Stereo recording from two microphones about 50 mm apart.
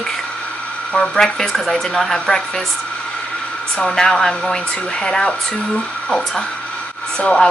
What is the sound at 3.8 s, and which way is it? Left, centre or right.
Speech, centre.